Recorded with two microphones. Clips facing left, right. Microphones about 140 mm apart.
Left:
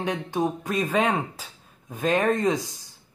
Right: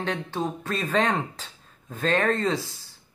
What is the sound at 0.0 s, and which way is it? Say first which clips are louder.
Speech: left 3 dB; 15° left (ahead or behind).